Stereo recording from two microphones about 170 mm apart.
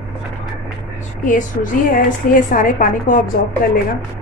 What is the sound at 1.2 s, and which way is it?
A woman's voice, 50° left (ahead or behind).